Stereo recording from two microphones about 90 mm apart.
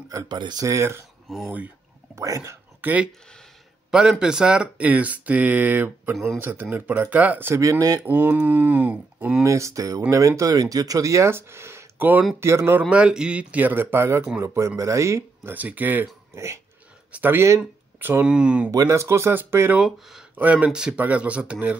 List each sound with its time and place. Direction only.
0.3 s speech: 55° right (ahead or behind)
0.7 s speech: 30° right (ahead or behind)
1.3 s speech: centre (ahead or behind)
2.1 s speech: 35° right (ahead or behind)
2.8 s speech: 15° right (ahead or behind)
6.1 s speech: centre (ahead or behind)
6.4 s speech: 20° right (ahead or behind)
9.4 s speech: 35° right (ahead or behind)
12.9 s speech: 10° right (ahead or behind); by 15.5 s 35° right (ahead or behind)
15.5 s speech: 20° right (ahead or behind)
16.3 s dog: 30° right (ahead or behind)
17.1 s speech: 20° right (ahead or behind)
18.7 s speech: 35° right (ahead or behind)
19.7 s speech: 5° right (ahead or behind)